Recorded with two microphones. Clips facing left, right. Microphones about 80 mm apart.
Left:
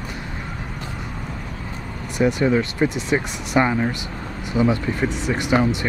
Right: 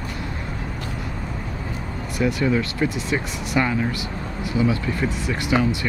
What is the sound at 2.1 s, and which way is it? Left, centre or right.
Speech, left.